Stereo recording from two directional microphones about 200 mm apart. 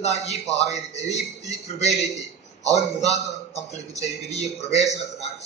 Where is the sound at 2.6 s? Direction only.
35° left (ahead or behind).